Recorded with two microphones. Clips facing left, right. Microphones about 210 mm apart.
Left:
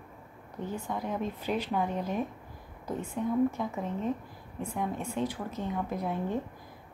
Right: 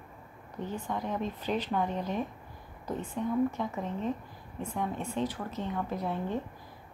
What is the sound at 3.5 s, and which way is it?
A woman's voice, 10° left (ahead or behind).